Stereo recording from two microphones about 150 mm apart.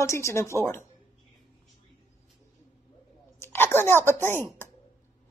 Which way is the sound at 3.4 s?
15° left (ahead or behind).